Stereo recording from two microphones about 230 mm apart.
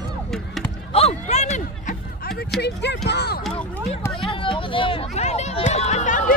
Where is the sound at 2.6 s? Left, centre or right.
Left.